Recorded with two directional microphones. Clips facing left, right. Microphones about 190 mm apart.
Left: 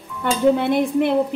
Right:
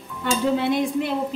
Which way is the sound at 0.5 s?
55° left (ahead or behind).